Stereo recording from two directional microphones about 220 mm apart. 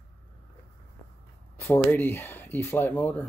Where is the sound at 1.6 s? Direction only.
10° left (ahead or behind).